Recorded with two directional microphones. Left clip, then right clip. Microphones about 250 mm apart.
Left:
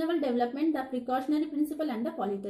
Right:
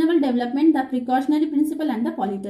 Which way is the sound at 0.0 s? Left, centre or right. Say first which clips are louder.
Right 8 dB; centre.